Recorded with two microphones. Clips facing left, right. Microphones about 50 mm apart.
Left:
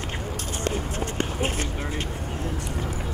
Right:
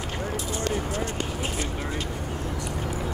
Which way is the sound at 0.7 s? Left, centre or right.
Left.